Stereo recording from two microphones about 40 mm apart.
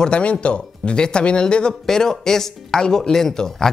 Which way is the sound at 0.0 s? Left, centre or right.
Left.